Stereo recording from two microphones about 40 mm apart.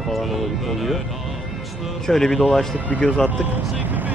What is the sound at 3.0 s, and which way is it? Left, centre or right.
Speech, left.